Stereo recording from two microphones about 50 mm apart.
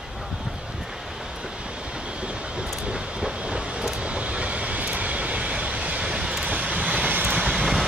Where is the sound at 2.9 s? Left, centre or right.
Centre.